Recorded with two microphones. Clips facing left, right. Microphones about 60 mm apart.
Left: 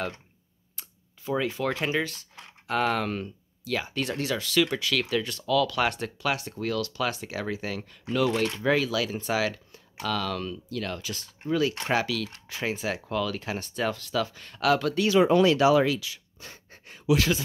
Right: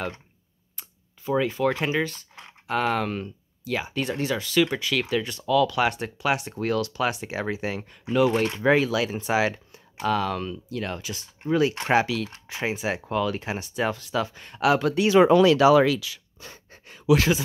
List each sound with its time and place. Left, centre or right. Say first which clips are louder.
0.7 s speech: right 1 dB; centre
8.4 s speech: right 4 dB; right
15.1 s speech: right 4 dB; right